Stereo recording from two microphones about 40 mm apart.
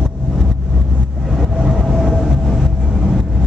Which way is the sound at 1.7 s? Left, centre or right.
Centre.